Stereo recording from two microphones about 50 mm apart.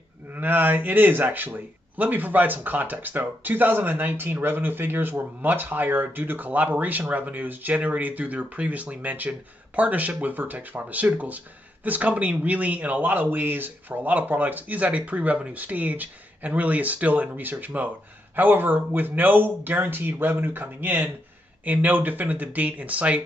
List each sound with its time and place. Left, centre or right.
0.3 s speech: right